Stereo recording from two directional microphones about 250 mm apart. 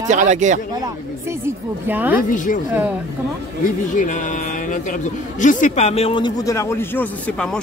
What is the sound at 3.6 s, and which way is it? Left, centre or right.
A man's voice, left.